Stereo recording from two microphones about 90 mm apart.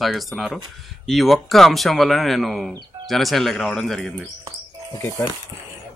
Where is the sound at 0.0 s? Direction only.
Centre (ahead or behind).